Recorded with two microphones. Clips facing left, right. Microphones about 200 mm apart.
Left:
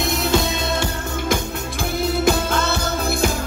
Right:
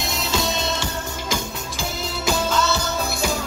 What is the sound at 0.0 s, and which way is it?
Music, 55° left (ahead or behind).